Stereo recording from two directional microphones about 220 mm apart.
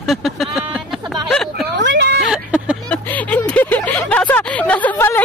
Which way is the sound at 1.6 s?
55° right (ahead or behind).